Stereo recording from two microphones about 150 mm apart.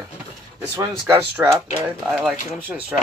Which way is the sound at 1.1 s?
15° right (ahead or behind).